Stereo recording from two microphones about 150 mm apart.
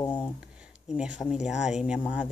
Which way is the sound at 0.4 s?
5° right (ahead or behind).